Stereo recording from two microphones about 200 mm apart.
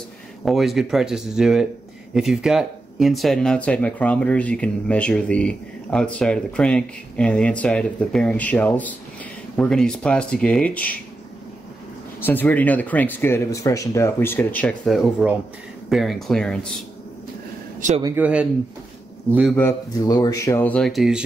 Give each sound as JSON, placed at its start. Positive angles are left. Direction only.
{"t": 0.5, "sound": "speech", "side_deg": 0}
{"t": 12.2, "sound": "speech", "side_deg": 10}
{"t": 17.7, "sound": "speech", "side_deg": -35}
{"t": 18.0, "sound": "speech", "side_deg": -10}
{"t": 19.5, "sound": "speech", "side_deg": 15}